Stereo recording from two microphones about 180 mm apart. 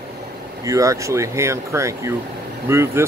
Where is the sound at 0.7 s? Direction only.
20° right (ahead or behind).